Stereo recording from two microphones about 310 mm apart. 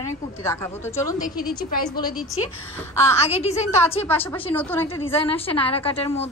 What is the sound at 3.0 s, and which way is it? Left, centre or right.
Speech, centre.